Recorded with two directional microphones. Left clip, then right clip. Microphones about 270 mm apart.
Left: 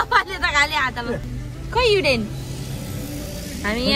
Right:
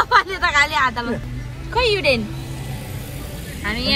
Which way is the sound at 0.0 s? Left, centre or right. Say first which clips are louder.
Right 3 dB; centre.